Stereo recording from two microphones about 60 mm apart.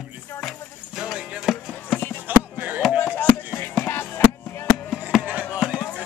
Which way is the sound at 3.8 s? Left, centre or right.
Left.